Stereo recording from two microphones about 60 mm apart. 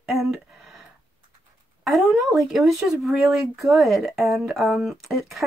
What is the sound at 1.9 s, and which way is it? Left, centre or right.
Speech, centre.